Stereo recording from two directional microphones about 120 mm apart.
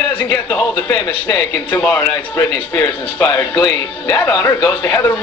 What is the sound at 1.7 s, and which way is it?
Speech, 15° left (ahead or behind).